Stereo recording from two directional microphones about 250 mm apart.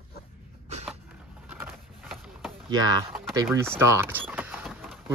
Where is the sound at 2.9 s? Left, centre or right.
Centre.